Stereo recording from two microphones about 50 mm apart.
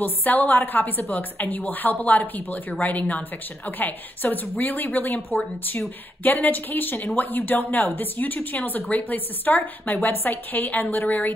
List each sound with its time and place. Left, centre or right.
0.0 s a woman's voice: left